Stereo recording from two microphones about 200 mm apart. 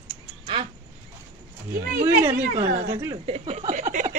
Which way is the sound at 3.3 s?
30° right (ahead or behind).